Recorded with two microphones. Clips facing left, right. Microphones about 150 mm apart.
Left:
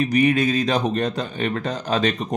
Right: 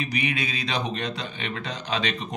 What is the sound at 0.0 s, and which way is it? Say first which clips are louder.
Speech: left 11 dB; 45° left (ahead or behind).